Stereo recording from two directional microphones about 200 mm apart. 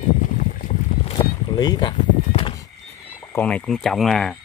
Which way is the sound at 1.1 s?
20° left (ahead or behind).